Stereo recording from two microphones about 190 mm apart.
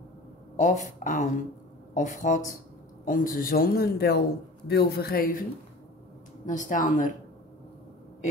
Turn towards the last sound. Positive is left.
turn(degrees=40)  # may be behind; listen again after turning